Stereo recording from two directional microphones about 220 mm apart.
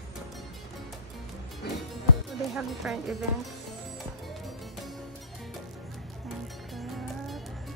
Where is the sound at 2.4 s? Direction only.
Centre (ahead or behind).